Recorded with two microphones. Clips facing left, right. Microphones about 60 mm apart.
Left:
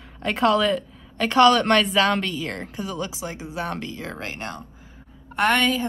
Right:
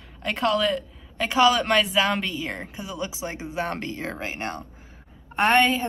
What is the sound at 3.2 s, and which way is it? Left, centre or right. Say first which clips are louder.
Speech: right 1 dB; right.